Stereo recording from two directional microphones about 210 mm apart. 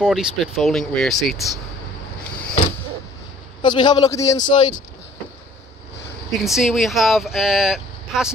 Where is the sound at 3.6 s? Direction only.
20° left (ahead or behind).